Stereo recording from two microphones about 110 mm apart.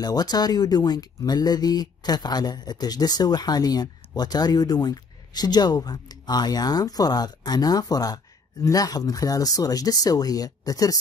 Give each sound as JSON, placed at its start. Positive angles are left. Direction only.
{"t": 0.0, "sound": "speech", "side_deg": 35}